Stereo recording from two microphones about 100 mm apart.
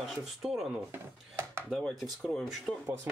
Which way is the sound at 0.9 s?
25° right (ahead or behind).